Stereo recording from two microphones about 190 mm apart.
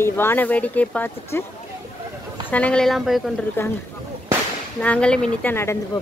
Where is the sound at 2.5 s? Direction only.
5° left (ahead or behind).